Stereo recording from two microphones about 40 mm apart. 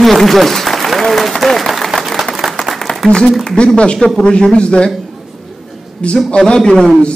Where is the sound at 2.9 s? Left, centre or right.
Left.